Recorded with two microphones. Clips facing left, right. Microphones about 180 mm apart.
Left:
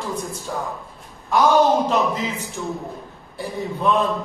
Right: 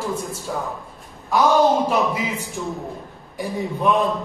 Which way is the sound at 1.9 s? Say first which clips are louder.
Even; 10° right (ahead or behind).